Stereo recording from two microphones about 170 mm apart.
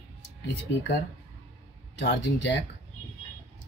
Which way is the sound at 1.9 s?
90° left.